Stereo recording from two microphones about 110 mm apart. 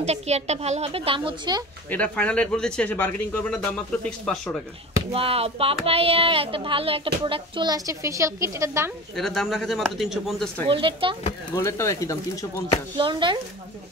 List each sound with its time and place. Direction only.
0.0 s a woman's voice: 80° right; by 1.6 s 45° right (ahead or behind)
1.9 s speech: 10° left (ahead or behind)
5.1 s speech: 60° right (ahead or behind)
7.7 s a woman's voice: 30° right (ahead or behind)
9.1 s speech: 5° left (ahead or behind)
10.7 s speech: 50° right (ahead or behind)
11.5 s speech: 25° left (ahead or behind)
12.9 s speech: 45° right (ahead or behind)